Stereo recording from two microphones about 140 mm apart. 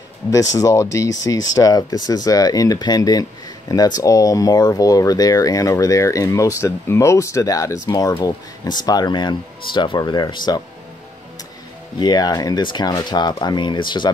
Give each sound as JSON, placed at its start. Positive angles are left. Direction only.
{"t": 0.3, "sound": "speech", "side_deg": 25}
{"t": 12.0, "sound": "speech", "side_deg": 30}